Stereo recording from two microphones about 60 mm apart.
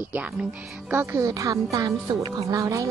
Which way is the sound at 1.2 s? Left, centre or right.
Right.